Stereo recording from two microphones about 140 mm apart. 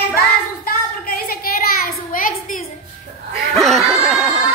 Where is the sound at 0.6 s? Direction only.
90° left.